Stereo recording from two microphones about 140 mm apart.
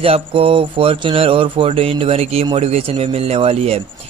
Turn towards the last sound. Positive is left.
turn(degrees=-45)  # may be behind; listen again after turning